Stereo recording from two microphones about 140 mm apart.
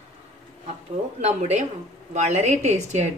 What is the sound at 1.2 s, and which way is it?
A woman's voice, 50° right (ahead or behind).